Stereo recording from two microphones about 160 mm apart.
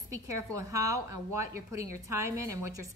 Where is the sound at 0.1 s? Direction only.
20° right (ahead or behind).